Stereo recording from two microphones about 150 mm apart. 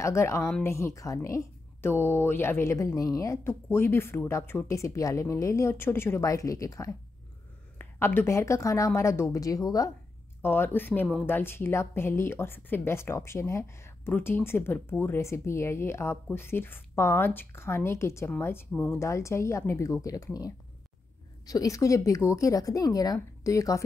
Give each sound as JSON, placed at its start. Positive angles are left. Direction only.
{"t": 0.0, "sound": "a woman's voice", "side_deg": 20}
{"t": 21.5, "sound": "speech", "side_deg": 25}